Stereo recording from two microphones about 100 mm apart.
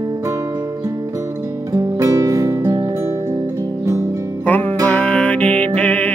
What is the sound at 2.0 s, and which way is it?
Music, 35° right (ahead or behind).